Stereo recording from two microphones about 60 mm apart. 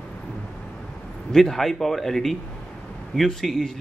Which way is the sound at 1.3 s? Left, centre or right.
Centre.